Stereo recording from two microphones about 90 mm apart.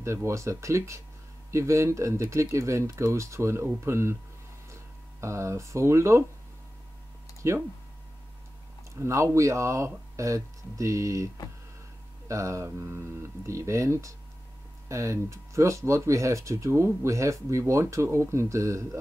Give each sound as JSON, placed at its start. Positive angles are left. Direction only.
{"t": 0.0, "sound": "speech", "side_deg": -35}
{"t": 5.2, "sound": "speech", "side_deg": -30}
{"t": 7.4, "sound": "speech", "side_deg": -30}
{"t": 8.9, "sound": "speech", "side_deg": -30}
{"t": 12.3, "sound": "speech", "side_deg": -35}